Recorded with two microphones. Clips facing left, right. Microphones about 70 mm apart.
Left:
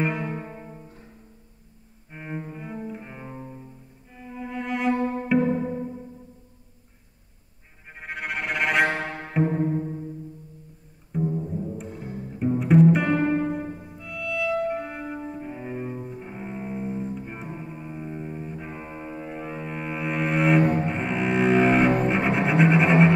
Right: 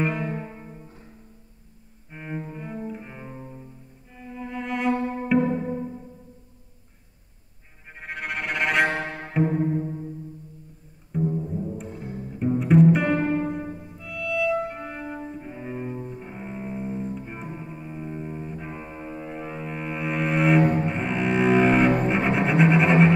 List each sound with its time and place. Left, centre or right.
0.0 s music: centre
2.0 s cello: centre
4.2 s music: centre
8.0 s music: centre
9.0 s music: left
9.6 s music: centre
11.1 s music: centre
20.8 s double bass: centre